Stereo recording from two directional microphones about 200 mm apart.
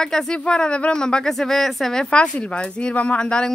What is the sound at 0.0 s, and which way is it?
Speech, 5° left (ahead or behind).